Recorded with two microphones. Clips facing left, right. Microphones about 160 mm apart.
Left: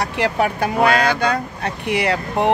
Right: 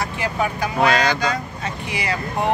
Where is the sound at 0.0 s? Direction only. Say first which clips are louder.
Left 4 dB; 65° left (ahead or behind).